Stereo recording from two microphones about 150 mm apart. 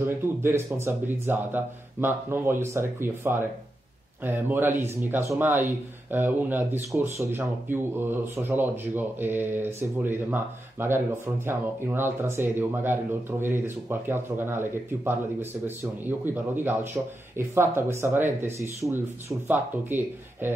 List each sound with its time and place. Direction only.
0.4 s speech: 15° right (ahead or behind)